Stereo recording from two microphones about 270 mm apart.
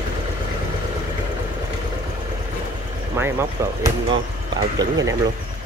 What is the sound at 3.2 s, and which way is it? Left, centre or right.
Speech, centre.